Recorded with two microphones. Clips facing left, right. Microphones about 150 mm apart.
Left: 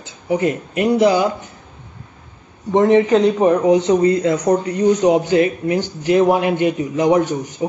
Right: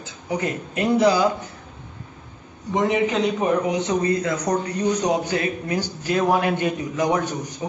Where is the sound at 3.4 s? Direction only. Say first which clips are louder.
Left 8 dB; 30° left (ahead or behind).